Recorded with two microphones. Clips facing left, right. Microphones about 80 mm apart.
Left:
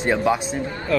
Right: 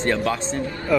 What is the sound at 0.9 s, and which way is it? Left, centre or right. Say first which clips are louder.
Speech: right 1 dB; centre.